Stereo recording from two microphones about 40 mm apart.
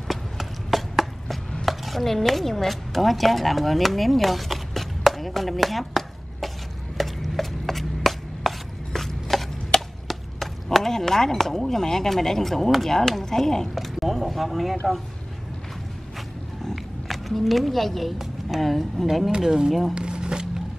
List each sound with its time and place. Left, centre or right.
0.1 s a sound: centre
1.7 s speech: centre
7.0 s chopping: centre
16.7 s a woman's voice: centre
19.3 s speech: centre
19.9 s a sound: right